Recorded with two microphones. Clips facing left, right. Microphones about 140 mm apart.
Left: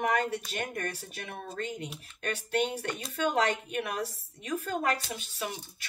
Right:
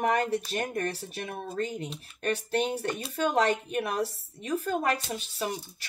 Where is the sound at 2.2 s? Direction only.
35° right (ahead or behind).